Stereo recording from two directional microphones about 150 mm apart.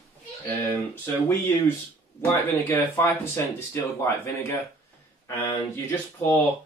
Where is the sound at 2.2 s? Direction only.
15° left (ahead or behind).